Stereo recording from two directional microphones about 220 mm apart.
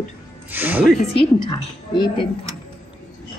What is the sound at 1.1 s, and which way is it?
A woman's voice, 20° left (ahead or behind).